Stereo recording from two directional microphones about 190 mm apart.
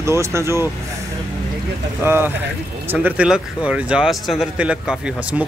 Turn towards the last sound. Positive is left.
turn(degrees=-5)  # may be behind; listen again after turning